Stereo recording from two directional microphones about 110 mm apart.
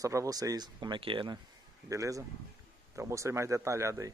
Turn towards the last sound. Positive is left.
turn(degrees=-25)  # may be behind; listen again after turning